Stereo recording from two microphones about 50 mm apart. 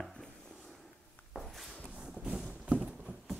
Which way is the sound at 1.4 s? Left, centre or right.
Centre.